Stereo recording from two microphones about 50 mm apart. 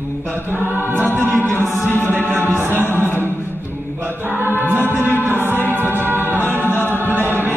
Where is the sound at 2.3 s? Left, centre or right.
Right.